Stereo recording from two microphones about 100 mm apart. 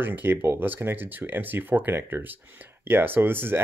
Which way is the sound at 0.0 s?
20° right (ahead or behind).